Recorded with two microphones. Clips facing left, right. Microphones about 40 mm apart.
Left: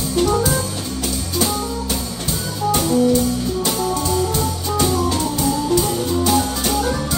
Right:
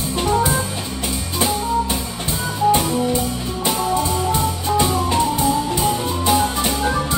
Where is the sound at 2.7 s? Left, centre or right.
Right.